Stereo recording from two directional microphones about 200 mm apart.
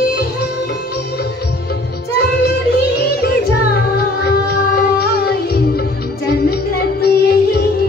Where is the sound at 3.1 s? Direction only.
55° left (ahead or behind).